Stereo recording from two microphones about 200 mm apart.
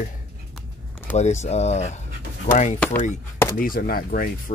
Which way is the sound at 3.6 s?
45° left (ahead or behind).